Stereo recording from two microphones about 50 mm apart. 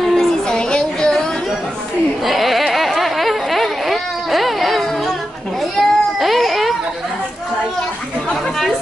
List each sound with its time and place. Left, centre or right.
0.0 s child singing: centre
0.5 s music: centre
2.2 s a sound: centre
5.6 s children playing: centre